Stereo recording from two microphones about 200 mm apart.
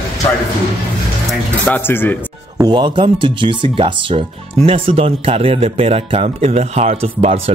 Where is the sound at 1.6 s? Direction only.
10° left (ahead or behind).